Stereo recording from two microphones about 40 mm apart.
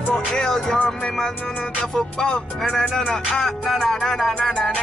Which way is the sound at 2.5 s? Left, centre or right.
Centre.